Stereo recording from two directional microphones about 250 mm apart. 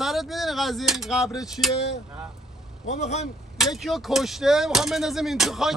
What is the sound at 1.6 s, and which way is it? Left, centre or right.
Speech, centre.